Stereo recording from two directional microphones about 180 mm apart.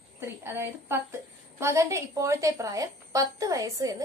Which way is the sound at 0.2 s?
15° right (ahead or behind).